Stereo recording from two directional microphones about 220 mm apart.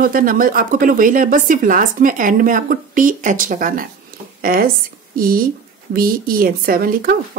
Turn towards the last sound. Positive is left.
turn(degrees=-40)  # may be behind; listen again after turning